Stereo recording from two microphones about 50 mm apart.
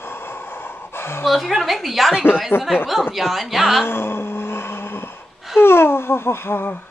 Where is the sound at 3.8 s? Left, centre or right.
Left.